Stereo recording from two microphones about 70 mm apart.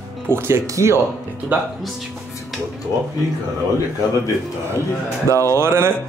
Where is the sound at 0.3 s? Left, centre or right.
Right.